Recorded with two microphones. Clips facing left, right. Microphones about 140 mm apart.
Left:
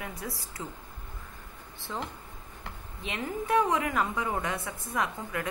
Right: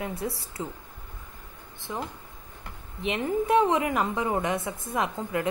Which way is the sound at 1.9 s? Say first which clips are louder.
Right 2 dB; 15° right (ahead or behind).